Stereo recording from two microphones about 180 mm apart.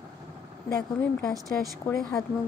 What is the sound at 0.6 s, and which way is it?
Speech, 20° left (ahead or behind).